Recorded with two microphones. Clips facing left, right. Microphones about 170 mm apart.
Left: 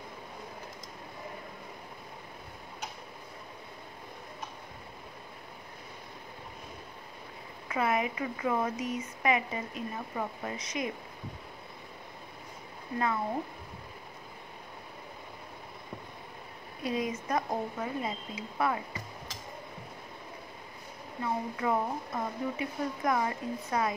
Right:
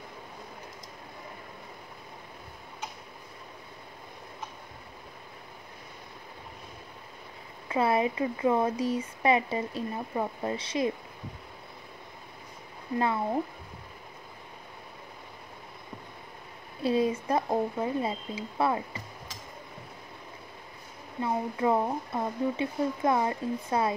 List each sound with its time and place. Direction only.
7.6 s speech: 30° right (ahead or behind)
16.8 s speech: 30° right (ahead or behind)
21.2 s speech: 25° right (ahead or behind)